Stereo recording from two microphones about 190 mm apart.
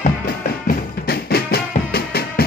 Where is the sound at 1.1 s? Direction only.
55° left (ahead or behind).